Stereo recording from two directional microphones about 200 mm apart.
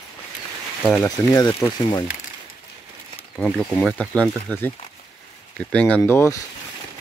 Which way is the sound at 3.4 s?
5° left (ahead or behind).